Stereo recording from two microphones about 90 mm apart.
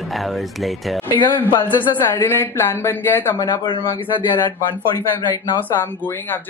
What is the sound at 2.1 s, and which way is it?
Speech, 25° left (ahead or behind).